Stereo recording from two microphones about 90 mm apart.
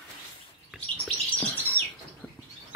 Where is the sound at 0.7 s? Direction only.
15° left (ahead or behind).